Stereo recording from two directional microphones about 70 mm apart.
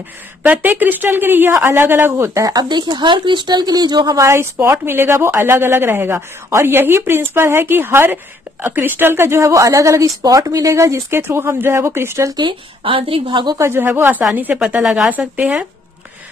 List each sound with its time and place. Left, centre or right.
0.4 s speech: right
2.4 s speech: right
4.2 s speech: right
9.5 s speech: right
13.6 s a woman's voice: right
14.8 s speech: centre
15.0 s a woman's voice: right